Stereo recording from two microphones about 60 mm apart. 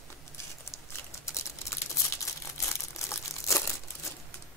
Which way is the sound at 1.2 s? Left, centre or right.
Left.